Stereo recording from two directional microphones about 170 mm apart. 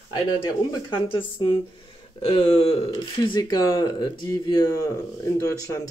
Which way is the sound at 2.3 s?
35° left (ahead or behind).